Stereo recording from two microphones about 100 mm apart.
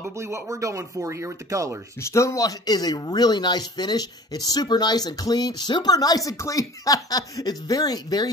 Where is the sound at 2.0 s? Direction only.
30° left (ahead or behind).